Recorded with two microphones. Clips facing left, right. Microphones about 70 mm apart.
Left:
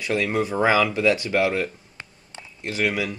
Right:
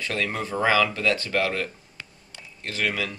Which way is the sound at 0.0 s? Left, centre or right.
Centre.